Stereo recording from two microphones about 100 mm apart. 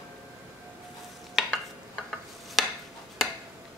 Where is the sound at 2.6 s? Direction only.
Centre (ahead or behind).